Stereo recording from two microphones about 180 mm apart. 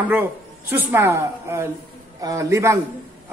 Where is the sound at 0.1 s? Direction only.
10° right (ahead or behind).